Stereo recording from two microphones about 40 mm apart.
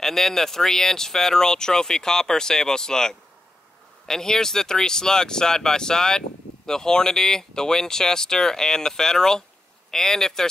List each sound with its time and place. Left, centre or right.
0.0 s speech: centre